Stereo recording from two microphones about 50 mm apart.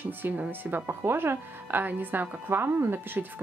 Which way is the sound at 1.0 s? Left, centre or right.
Right.